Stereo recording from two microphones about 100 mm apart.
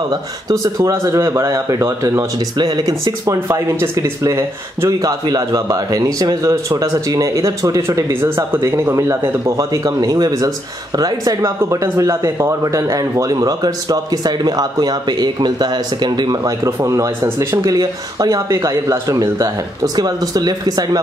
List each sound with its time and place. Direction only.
0.1 s speech: 35° right (ahead or behind)
2.5 s speech: 40° right (ahead or behind)